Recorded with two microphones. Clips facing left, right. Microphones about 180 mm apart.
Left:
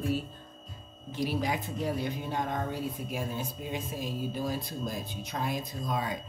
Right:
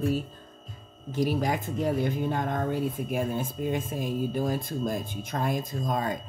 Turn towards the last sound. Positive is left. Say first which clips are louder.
# right 4 dB
turn(degrees=-45)  # may be behind; listen again after turning